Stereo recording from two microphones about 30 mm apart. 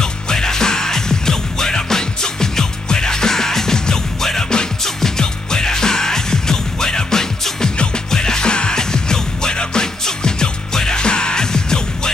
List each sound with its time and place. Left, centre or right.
0.0 s music: left
7.7 s music: left
8.1 s music: left